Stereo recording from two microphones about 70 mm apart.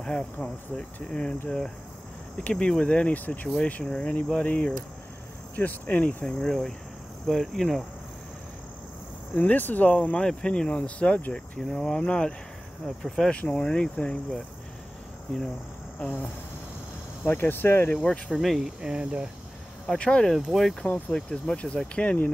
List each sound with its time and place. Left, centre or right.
0.0 s speech: centre
2.4 s speech: centre
3.8 s speech: centre
6.2 s cricket: centre
9.3 s speech: left
11.6 s speech: centre
12.8 s cricket: centre
13.3 s speech: centre
17.2 s speech: left
18.3 s cricket: centre
18.8 s speech: centre
19.9 s speech: centre
20.3 s cricket: centre
20.8 s speech: centre